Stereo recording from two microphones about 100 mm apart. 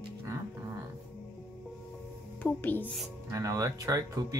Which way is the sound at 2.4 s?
20° left (ahead or behind).